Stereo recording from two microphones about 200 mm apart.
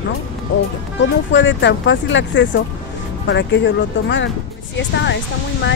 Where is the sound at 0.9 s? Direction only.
65° left (ahead or behind).